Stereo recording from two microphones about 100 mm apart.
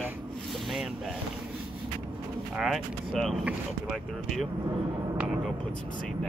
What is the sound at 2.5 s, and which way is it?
Speech, centre (ahead or behind).